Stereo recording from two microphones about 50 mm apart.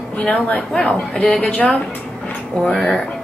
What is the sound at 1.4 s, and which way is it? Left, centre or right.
Speech, left.